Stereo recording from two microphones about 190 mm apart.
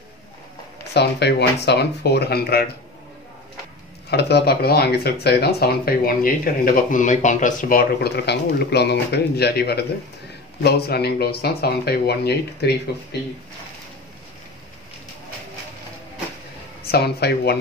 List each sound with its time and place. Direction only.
0.9 s speech: 60° left (ahead or behind)
4.1 s speech: 60° left (ahead or behind)
16.8 s speech: 55° left (ahead or behind)